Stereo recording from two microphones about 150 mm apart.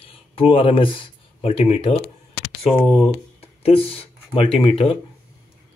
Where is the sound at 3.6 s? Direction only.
40° left (ahead or behind).